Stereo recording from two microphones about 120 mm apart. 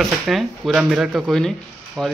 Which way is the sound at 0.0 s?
Centre (ahead or behind).